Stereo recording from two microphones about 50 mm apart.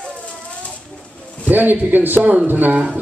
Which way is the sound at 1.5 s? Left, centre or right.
Right.